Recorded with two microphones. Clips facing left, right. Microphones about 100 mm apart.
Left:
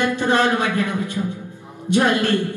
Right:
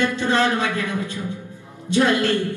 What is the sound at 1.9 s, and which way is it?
Speech, 15° left (ahead or behind).